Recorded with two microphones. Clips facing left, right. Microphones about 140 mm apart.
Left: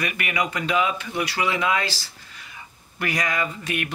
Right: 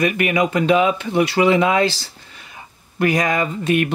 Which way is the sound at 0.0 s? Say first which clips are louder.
Right 9 dB; 25° right (ahead or behind).